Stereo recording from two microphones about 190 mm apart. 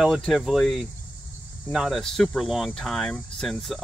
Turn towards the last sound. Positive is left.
turn(degrees=0)  # may be behind; listen again after turning